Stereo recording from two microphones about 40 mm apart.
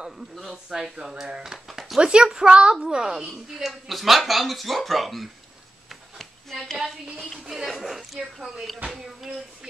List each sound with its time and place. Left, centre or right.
0.4 s a woman's voice: centre
1.7 s a sound: centre
2.0 s a child's voice: right; by 5.3 s centre
7.4 s a woman's voice: centre